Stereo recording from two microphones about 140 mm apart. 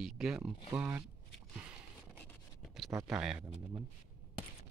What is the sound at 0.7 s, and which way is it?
Speech, 15° right (ahead or behind).